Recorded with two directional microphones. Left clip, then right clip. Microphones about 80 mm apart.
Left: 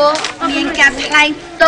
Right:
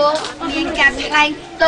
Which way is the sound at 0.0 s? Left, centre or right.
Left.